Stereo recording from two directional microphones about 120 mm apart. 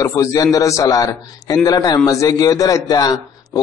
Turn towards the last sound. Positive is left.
turn(degrees=35)  # may be behind; listen again after turning